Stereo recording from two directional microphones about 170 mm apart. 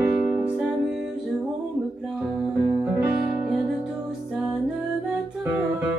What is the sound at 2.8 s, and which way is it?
Music, 10° right (ahead or behind).